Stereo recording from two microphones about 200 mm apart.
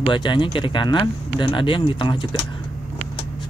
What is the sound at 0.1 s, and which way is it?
Speech, 25° left (ahead or behind).